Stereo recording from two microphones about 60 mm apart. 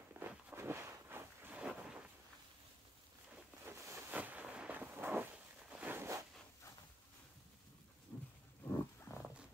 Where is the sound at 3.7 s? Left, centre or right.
Right.